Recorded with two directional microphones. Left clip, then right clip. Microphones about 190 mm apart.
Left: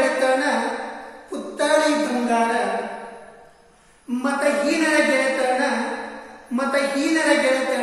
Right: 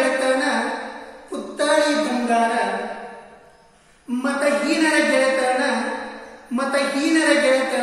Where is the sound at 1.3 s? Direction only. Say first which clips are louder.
Even; 5° right (ahead or behind).